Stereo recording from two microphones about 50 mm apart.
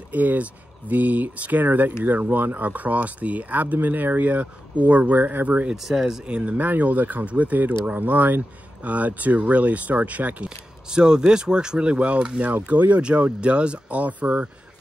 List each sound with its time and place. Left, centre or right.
0.1 s speech: right
5.8 s speech: centre
6.2 s speech: right
6.5 s speech: right
10.9 s speech: centre